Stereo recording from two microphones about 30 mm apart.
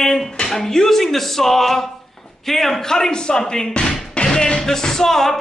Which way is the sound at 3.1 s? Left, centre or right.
Left.